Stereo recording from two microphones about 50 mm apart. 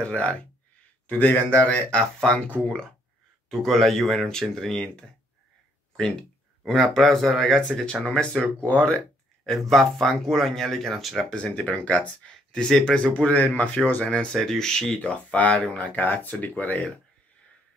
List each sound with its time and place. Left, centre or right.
0.0 s speech: left
2.6 s speech: centre
6.6 s speech: centre; by 8.9 s left
9.5 s speech: centre
11.4 s speech: left
12.5 s speech: centre
13.2 s speech: left
14.1 s speech: centre
15.0 s speech: left
15.5 s speech: centre
15.8 s speech: left